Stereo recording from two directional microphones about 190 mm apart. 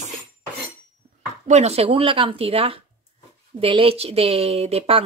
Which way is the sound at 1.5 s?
35° right (ahead or behind).